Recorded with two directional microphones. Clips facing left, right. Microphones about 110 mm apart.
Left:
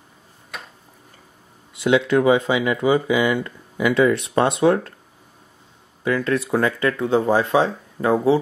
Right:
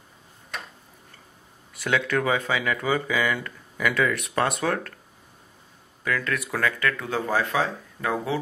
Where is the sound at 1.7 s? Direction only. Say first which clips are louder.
Left 8 dB; 20° left (ahead or behind).